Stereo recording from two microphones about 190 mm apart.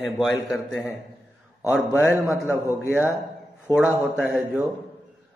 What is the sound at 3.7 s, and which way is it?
Speech, 20° left (ahead or behind).